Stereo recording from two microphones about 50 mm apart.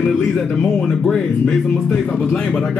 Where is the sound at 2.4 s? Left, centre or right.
Centre.